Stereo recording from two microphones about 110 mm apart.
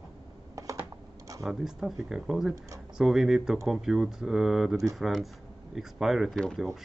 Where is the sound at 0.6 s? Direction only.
30° right (ahead or behind).